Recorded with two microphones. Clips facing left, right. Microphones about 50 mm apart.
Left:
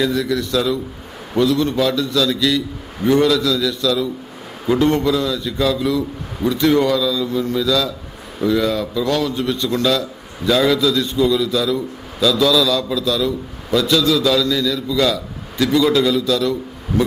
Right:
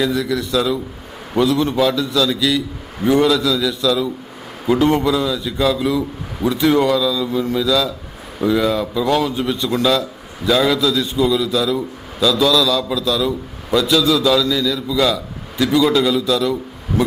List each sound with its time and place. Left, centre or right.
0.0 s a man's voice: centre